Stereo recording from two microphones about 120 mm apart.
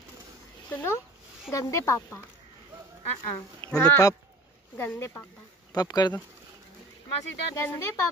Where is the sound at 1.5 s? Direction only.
25° left (ahead or behind).